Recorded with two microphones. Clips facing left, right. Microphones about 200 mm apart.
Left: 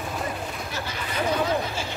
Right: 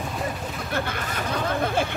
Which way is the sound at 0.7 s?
55° right (ahead or behind).